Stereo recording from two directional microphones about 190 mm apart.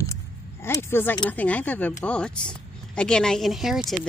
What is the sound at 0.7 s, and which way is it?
A woman's voice, 15° left (ahead or behind).